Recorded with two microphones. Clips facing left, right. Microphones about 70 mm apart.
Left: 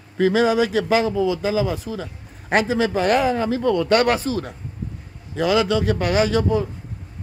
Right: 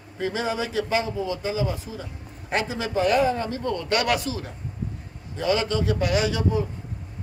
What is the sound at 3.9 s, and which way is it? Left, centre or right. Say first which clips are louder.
Speech: left 3 dB; left.